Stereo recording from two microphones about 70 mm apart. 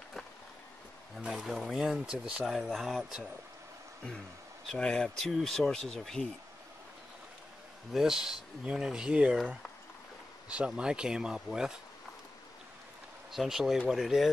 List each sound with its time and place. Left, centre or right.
1.1 s speech: centre
4.7 s speech: centre
7.9 s speech: centre
13.3 s speech: centre